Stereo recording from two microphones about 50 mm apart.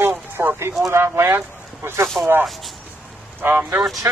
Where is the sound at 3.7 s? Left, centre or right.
Centre.